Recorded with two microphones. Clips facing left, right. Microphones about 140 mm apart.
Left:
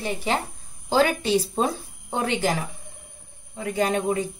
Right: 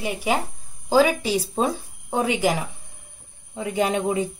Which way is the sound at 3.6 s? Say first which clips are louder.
Right 1 dB; 15° right (ahead or behind).